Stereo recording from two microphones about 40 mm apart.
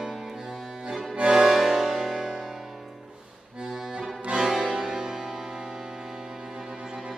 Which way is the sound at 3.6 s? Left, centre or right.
Centre.